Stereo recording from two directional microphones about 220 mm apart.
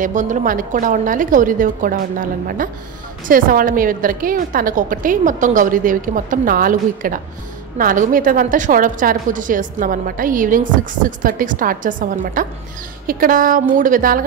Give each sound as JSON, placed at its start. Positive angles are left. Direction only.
{"t": 0.0, "sound": "a woman's voice", "side_deg": -35}